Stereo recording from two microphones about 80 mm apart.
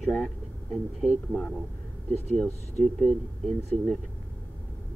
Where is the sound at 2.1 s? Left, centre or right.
Centre.